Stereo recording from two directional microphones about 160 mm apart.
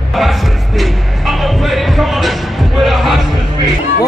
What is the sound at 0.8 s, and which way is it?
Music, centre (ahead or behind).